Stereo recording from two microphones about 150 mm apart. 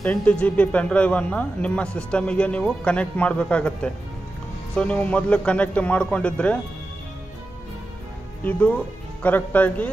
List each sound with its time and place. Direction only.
0.0 s speech: 10° left (ahead or behind)
8.5 s speech: 10° left (ahead or behind)